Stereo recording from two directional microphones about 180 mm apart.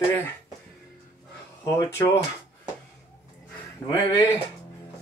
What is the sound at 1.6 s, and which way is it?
Speech, 15° left (ahead or behind).